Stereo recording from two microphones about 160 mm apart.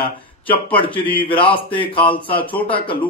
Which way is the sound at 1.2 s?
35° left (ahead or behind).